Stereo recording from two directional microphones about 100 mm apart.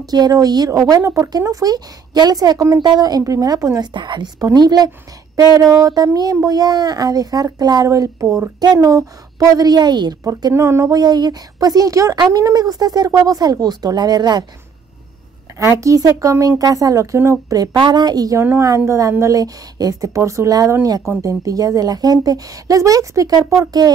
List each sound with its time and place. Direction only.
0.0 s speech: 40° right (ahead or behind)
3.9 s a woman's voice: 50° right (ahead or behind)
10.5 s speech: 30° right (ahead or behind)
11.0 s speech: 45° right (ahead or behind)
15.6 s speech: 30° right (ahead or behind)
17.7 s a woman's voice: 45° right (ahead or behind)